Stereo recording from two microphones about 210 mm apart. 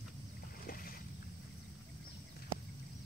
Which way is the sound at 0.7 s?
45° left (ahead or behind).